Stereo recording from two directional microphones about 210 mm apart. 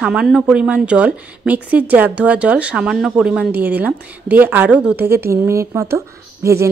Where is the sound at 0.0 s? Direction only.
5° right (ahead or behind).